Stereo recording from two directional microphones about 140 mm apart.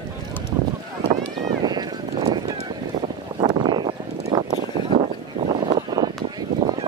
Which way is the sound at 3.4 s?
35° right (ahead or behind).